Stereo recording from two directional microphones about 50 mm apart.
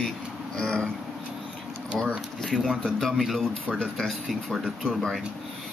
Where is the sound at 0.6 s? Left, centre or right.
Centre.